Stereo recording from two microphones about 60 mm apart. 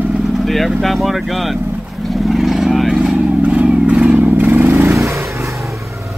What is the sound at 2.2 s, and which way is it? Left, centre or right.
Vehicle, centre.